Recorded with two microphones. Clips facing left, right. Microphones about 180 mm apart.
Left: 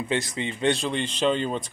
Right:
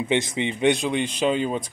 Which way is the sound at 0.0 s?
20° right (ahead or behind).